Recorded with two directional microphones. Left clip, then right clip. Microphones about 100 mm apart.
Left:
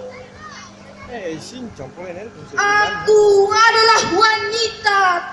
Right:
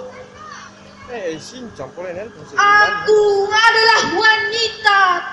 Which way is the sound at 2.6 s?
30° left (ahead or behind).